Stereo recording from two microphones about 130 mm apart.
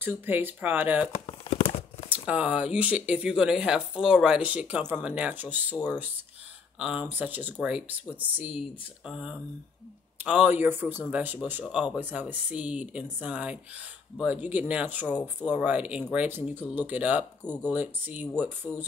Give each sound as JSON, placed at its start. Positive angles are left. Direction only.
{"t": 0.0, "sound": "speech", "side_deg": -15}
{"t": 1.2, "sound": "tearing", "side_deg": 50}
{"t": 2.0, "sound": "speech", "side_deg": -10}
{"t": 6.8, "sound": "speech", "side_deg": -10}